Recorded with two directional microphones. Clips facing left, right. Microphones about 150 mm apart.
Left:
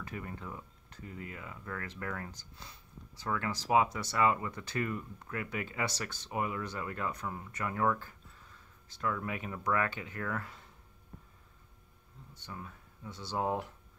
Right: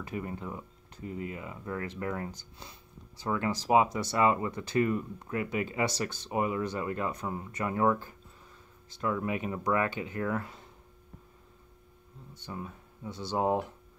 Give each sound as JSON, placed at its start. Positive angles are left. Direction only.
{"t": 0.0, "sound": "speech", "side_deg": -20}
{"t": 12.4, "sound": "speech", "side_deg": -20}